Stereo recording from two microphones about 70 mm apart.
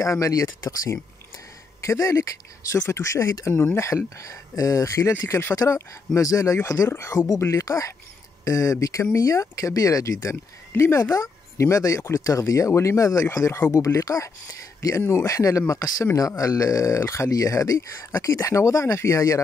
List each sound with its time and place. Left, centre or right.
0.0 s speech: left
11.1 s a sound: left
11.7 s speech: left
15.0 s speech: left